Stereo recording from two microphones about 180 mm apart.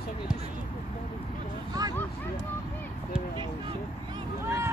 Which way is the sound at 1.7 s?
20° right (ahead or behind).